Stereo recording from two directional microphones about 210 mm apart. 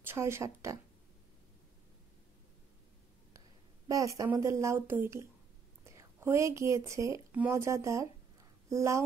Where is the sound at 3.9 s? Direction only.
15° right (ahead or behind).